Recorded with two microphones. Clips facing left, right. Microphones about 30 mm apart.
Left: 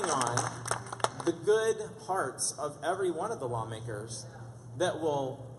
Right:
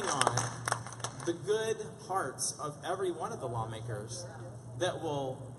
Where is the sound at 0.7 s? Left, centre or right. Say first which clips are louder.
Right 1 dB; right.